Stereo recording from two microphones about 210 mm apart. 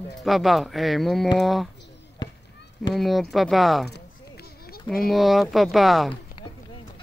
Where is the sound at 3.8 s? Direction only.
50° left (ahead or behind).